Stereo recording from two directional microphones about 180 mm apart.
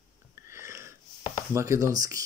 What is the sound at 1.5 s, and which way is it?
Speech, 15° right (ahead or behind).